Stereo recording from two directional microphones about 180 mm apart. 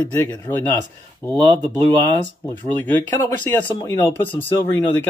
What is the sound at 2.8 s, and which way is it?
Speech, 10° left (ahead or behind).